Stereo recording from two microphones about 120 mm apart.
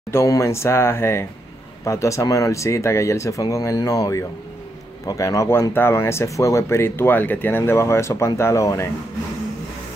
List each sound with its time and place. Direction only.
0.1 s speech: 25° left (ahead or behind)